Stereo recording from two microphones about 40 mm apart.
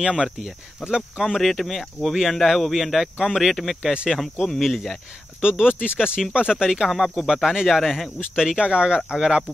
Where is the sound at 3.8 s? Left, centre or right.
Right.